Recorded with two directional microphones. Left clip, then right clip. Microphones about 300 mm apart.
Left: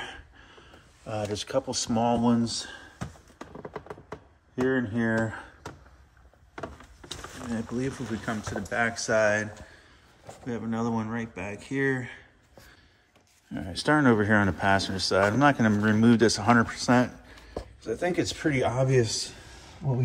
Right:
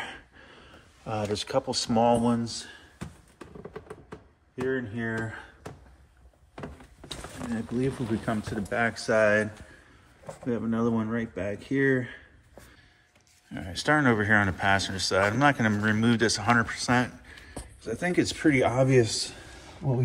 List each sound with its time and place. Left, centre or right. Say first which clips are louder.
0.0 s a sound: right 1 dB; centre
5.2 s speech: left 5 dB; centre
7.1 s speech: even; centre
13.5 s speech: even; centre